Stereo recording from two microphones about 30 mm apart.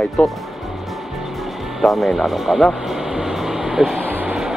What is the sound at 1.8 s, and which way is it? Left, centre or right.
Speech, centre.